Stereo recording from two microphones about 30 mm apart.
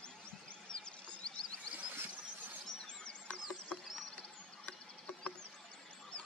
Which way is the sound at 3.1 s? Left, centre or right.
Left.